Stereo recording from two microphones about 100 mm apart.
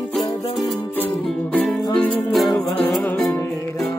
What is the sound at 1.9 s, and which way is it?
Music, 10° left (ahead or behind).